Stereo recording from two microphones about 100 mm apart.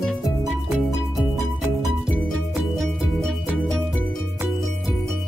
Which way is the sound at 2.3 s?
Centre (ahead or behind).